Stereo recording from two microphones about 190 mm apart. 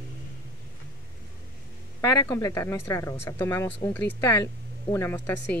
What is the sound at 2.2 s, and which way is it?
Speech, 15° left (ahead or behind).